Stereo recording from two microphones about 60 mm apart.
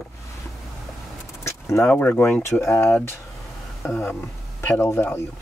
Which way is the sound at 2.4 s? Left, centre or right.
Left.